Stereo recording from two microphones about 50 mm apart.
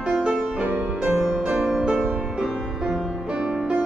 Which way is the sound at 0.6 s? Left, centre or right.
Right.